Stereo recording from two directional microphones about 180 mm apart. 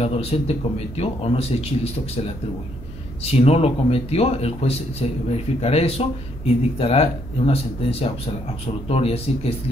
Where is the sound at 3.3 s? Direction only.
35° left (ahead or behind).